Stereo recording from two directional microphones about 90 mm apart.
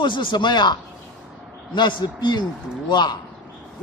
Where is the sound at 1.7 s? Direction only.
55° left (ahead or behind).